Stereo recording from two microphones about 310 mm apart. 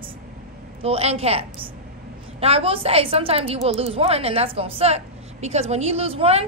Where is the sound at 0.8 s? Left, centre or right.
Centre.